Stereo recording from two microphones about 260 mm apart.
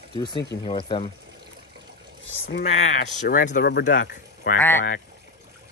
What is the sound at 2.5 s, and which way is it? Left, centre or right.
Speech, left.